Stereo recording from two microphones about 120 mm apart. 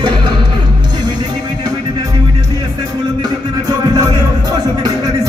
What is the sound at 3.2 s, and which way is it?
Music, 30° right (ahead or behind).